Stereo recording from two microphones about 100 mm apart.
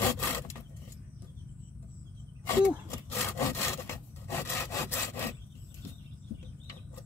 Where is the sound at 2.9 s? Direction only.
25° left (ahead or behind).